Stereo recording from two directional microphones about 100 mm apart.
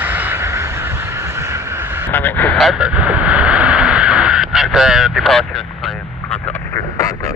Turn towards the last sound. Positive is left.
turn(degrees=0)  # may be behind; listen again after turning